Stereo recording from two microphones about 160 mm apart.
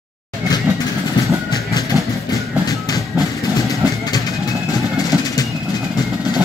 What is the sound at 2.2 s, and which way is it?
Music, 25° left (ahead or behind).